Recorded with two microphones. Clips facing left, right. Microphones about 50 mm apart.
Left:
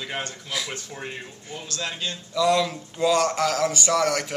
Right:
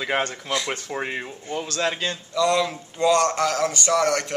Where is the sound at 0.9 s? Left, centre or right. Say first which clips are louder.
Right 9 dB; right.